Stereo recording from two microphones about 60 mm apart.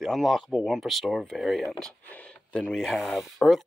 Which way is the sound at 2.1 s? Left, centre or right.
Centre.